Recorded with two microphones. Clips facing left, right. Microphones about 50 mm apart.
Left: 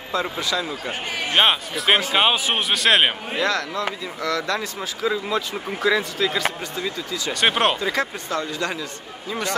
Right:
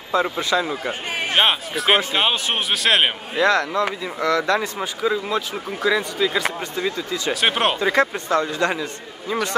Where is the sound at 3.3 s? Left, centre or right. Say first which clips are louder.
Right 7 dB; right.